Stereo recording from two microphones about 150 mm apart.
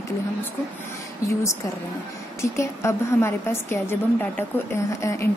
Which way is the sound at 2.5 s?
20° left (ahead or behind).